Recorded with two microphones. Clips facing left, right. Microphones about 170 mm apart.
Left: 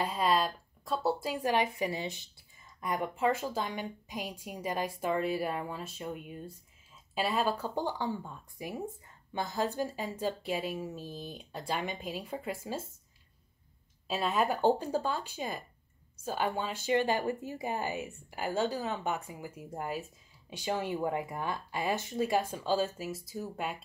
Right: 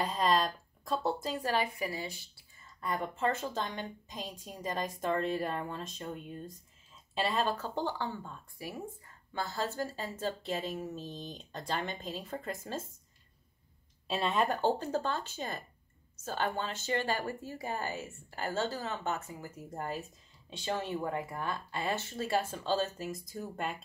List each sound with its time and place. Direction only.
0.0 s speech: 5° left (ahead or behind)
14.0 s speech: 5° left (ahead or behind)